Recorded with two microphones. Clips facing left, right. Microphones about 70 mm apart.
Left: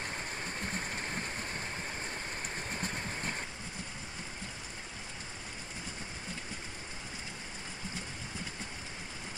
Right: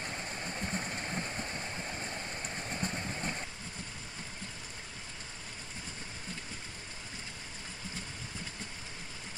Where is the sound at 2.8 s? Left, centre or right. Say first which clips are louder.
Right 3 dB; centre.